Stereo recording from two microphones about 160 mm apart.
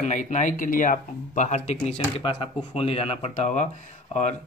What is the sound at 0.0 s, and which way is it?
Speech, 50° left (ahead or behind).